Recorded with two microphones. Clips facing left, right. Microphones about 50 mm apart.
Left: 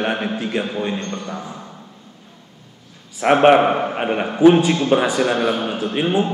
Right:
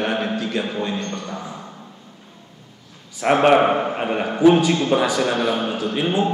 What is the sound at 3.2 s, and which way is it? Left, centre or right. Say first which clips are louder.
Speech: left 3 dB; left.